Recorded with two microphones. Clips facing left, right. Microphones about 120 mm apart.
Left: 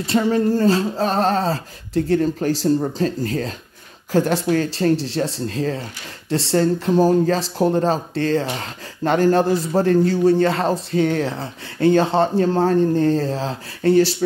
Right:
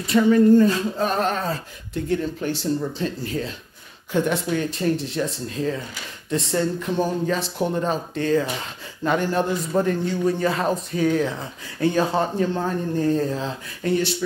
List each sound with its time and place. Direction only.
0.0 s speech: 35° left (ahead or behind)